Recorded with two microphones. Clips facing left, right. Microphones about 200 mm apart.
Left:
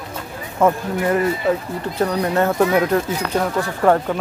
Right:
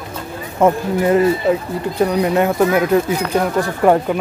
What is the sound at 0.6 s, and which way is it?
Speech, 20° right (ahead or behind).